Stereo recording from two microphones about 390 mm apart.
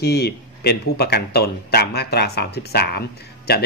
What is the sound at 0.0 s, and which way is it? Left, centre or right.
Speech, left.